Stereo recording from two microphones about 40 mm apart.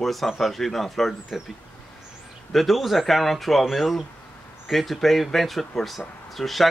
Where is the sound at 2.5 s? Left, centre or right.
Centre.